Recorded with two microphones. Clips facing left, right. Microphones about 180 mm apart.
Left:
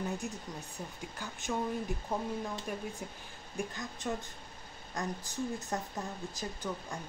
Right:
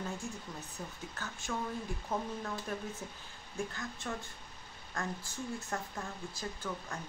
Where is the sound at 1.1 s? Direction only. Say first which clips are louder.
Left 4 dB; 15° left (ahead or behind).